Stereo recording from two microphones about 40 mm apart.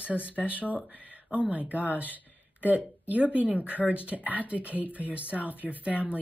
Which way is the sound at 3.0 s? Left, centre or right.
Right.